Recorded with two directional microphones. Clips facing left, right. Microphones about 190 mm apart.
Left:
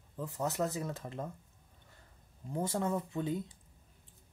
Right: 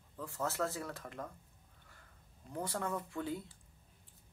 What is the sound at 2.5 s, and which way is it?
Speech, 25° left (ahead or behind).